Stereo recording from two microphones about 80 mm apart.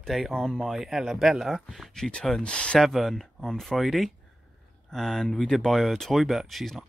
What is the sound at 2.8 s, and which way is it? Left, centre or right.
Speech, centre.